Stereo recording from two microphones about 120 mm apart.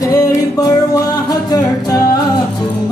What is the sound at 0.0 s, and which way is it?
Music, 30° left (ahead or behind).